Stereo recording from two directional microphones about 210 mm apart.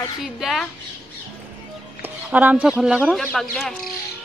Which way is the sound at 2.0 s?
5° right (ahead or behind).